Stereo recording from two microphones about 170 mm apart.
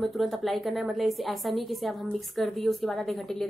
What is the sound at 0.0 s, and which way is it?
A woman's voice, centre (ahead or behind).